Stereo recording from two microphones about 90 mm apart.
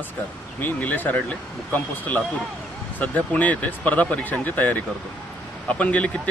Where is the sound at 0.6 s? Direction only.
20° left (ahead or behind).